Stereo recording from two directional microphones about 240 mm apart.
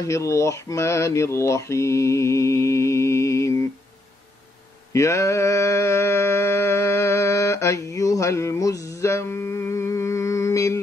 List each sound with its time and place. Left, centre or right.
0.0 s mantra: centre
4.9 s mantra: centre